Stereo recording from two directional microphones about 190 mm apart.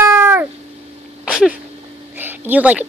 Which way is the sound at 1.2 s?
5° right (ahead or behind).